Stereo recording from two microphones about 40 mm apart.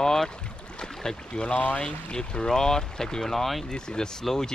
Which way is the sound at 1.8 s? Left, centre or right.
Left.